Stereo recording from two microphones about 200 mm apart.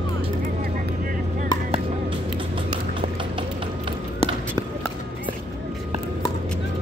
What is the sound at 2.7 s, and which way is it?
Music, 25° right (ahead or behind).